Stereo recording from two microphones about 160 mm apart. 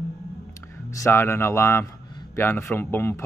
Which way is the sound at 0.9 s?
15° left (ahead or behind).